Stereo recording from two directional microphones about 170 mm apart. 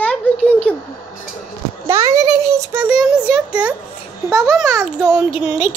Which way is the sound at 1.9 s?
15° right (ahead or behind).